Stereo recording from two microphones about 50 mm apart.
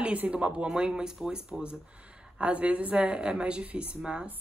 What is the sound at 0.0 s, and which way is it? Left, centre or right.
Speech, right.